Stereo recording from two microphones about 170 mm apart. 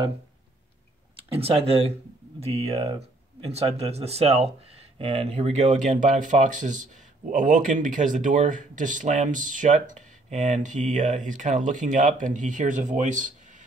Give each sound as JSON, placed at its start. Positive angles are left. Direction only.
{"t": 1.1, "sound": "speech", "side_deg": -35}